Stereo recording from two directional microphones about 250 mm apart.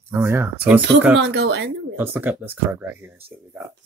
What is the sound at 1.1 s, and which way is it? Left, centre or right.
Speech, right.